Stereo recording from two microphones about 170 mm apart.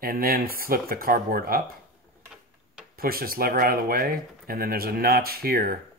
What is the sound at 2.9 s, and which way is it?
Speech, 60° right (ahead or behind).